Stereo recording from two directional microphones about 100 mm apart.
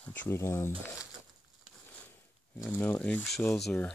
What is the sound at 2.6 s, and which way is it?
Speech, 20° left (ahead or behind).